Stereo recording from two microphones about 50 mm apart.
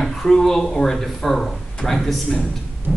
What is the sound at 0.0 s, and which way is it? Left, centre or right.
Speech, centre.